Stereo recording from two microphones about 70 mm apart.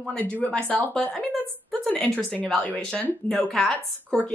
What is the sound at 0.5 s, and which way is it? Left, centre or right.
A woman's voice, centre.